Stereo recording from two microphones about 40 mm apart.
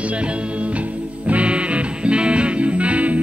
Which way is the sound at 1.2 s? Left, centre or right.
Right.